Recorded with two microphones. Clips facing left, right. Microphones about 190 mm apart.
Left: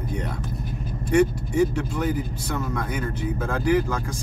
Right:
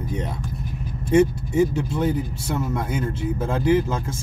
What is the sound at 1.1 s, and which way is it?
Speech, 25° right (ahead or behind).